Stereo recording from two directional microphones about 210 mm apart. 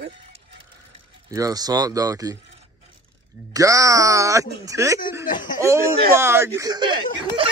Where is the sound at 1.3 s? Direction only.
15° right (ahead or behind).